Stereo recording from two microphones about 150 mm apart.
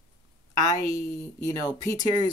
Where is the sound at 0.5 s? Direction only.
25° left (ahead or behind).